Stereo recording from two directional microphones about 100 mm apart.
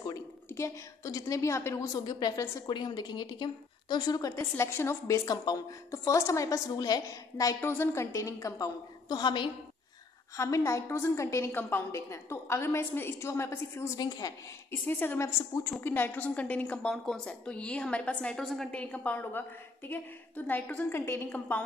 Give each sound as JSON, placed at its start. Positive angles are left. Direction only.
{"t": 0.5, "sound": "a woman's voice", "side_deg": 30}
{"t": 2.0, "sound": "a woman's voice", "side_deg": 40}
{"t": 4.4, "sound": "a woman's voice", "side_deg": 25}
{"t": 5.9, "sound": "a woman's voice", "side_deg": 30}
{"t": 7.6, "sound": "a woman's voice", "side_deg": 25}
{"t": 9.1, "sound": "a woman's voice", "side_deg": 50}
{"t": 10.3, "sound": "a woman's voice", "side_deg": 30}
{"t": 14.0, "sound": "a woman's voice", "side_deg": 40}
{"t": 14.7, "sound": "a woman's voice", "side_deg": 20}
{"t": 15.2, "sound": "a woman's voice", "side_deg": 30}
{"t": 15.8, "sound": "a woman's voice", "side_deg": 20}
{"t": 18.7, "sound": "a woman's voice", "side_deg": 15}